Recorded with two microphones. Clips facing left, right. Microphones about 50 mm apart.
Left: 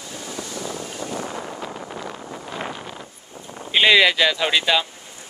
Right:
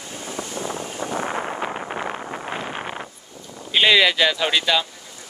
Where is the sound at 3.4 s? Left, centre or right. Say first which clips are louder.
Left 2 dB; left.